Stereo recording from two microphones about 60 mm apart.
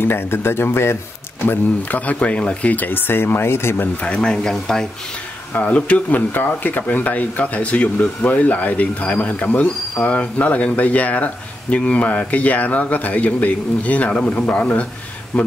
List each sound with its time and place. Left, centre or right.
0.0 s speech: left
2.0 s speech: left
4.0 s speech: centre
5.5 s speech: left